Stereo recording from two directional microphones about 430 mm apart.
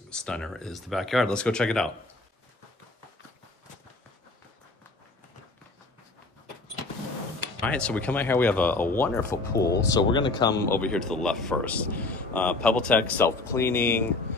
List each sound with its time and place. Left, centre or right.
0.1 s speech: centre
7.6 s speech: centre
9.6 s speech: left
9.9 s speech: centre